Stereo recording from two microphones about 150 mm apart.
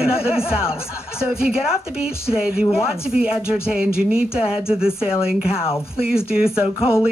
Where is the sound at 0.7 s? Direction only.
40° left (ahead or behind).